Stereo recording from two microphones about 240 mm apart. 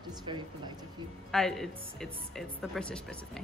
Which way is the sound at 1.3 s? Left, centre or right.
Centre.